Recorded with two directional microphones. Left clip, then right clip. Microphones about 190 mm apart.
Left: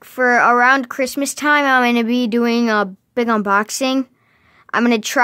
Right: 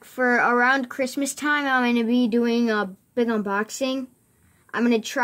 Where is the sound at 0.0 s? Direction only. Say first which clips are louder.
Left 7 dB; 30° left (ahead or behind).